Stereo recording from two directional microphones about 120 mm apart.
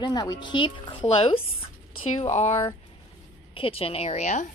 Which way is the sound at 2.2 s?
70° left (ahead or behind).